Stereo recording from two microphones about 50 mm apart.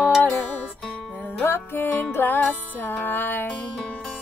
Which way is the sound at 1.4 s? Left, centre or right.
Left.